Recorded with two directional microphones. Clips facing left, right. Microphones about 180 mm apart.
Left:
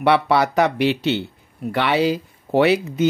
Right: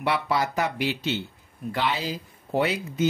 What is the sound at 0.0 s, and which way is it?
Speech, 70° left (ahead or behind).